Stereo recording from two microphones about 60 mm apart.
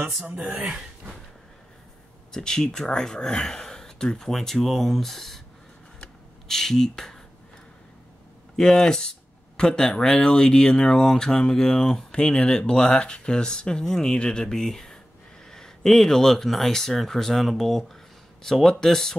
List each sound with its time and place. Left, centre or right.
0.4 s speech: right
0.7 s speech: centre
2.3 s speech: centre
5.9 s a sound: centre
8.5 s speech: centre